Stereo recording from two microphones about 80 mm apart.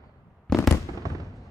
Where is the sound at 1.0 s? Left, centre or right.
Right.